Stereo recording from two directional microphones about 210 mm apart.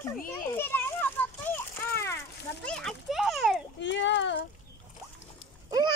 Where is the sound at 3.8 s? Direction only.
60° left (ahead or behind).